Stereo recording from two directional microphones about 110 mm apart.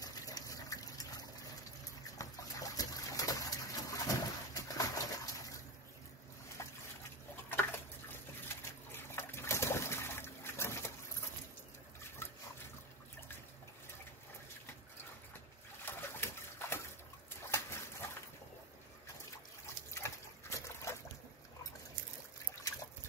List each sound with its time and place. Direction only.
0.0 s fill: 35° left (ahead or behind)
2.1 s a sound: 30° left (ahead or behind)
6.6 s trickle: 25° left (ahead or behind)
8.5 s water: 20° left (ahead or behind)
15.8 s pigeon: 20° left (ahead or behind)
17.5 s dog: 25° left (ahead or behind)
19.6 s trickle: 25° left (ahead or behind)